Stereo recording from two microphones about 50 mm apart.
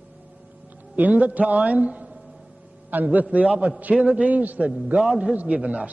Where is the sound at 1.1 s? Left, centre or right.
Right.